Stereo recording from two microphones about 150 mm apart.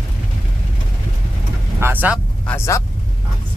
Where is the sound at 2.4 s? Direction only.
20° left (ahead or behind).